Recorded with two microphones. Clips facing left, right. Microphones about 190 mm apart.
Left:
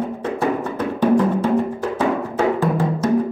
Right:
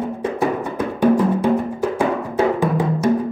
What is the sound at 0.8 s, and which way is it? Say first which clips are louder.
Music: right 1 dB; 10° right (ahead or behind).